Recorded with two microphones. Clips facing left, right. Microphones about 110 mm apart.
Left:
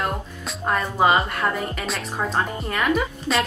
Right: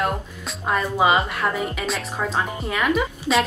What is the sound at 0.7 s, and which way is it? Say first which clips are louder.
A woman's voice: even; 5° right (ahead or behind).